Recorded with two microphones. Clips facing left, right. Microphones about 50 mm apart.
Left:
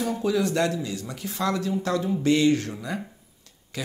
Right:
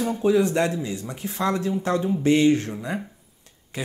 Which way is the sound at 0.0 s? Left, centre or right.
Right.